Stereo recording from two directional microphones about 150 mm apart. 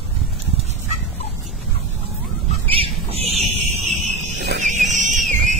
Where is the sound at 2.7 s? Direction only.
40° right (ahead or behind).